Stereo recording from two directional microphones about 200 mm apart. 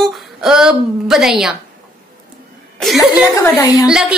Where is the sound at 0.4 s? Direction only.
5° right (ahead or behind).